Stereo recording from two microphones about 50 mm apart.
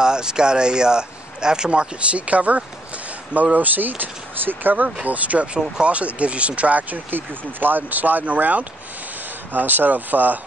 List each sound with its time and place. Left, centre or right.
0.0 s speech: centre; by 10.4 s right